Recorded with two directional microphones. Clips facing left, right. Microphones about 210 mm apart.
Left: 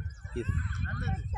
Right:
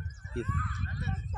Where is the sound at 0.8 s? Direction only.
55° left (ahead or behind).